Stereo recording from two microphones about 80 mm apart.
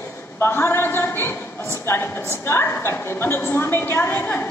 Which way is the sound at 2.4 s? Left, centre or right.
Left.